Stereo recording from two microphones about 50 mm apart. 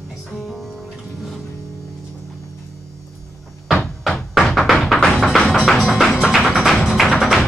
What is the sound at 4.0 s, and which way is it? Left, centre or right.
Music, centre.